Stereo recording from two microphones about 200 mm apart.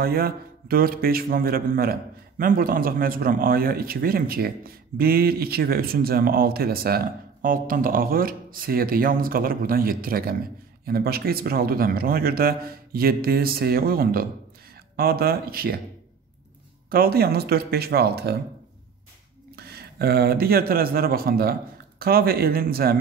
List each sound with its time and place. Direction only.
0.0 s speech: 50° right (ahead or behind)
16.9 s speech: 50° right (ahead or behind)
19.5 s speech: 50° right (ahead or behind)